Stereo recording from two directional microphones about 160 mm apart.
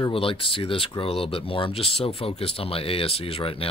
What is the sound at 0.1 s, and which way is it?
Speech, 35° left (ahead or behind).